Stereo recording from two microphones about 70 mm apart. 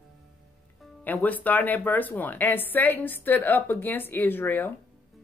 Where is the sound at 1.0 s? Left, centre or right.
Left.